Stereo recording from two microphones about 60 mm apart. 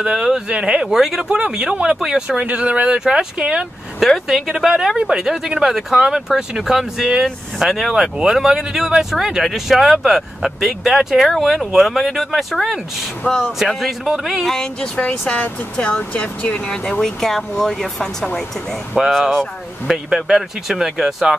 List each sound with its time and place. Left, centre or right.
0.0 s speech: centre
2.4 s speech: right
4.3 s speech: centre
13.2 s speech: centre